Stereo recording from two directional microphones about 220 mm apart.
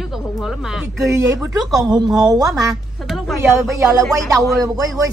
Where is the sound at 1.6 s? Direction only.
Centre (ahead or behind).